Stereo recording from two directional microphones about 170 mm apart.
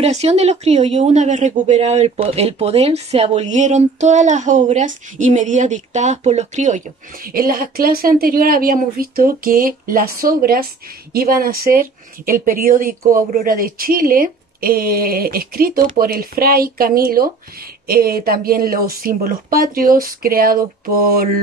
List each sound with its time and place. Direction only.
0.0 s speech: 40° right (ahead or behind)
7.2 s speech: 60° right (ahead or behind)